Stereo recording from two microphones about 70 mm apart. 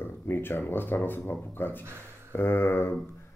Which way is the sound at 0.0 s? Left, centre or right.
Left.